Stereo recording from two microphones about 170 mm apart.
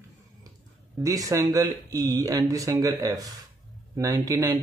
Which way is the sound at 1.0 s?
20° right (ahead or behind).